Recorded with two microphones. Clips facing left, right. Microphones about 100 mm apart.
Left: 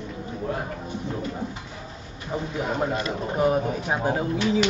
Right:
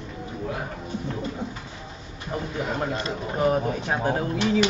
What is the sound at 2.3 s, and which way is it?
Speech, 10° left (ahead or behind).